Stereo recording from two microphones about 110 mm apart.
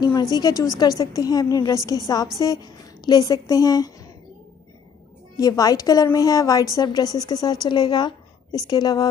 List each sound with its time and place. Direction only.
0.0 s a woman's voice: 35° left (ahead or behind)
5.4 s a woman's voice: 35° left (ahead or behind)